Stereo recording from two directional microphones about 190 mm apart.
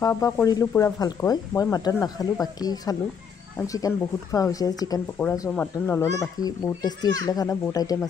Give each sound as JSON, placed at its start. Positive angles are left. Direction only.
{"t": 0.0, "sound": "speech", "side_deg": 15}